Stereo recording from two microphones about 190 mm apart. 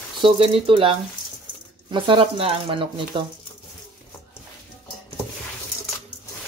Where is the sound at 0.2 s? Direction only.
30° right (ahead or behind).